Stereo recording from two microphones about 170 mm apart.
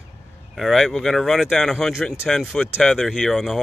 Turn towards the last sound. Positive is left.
turn(degrees=0)  # may be behind; listen again after turning